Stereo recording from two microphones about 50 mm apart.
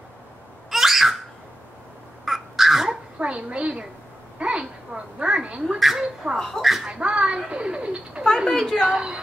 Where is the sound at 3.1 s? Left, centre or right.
Right.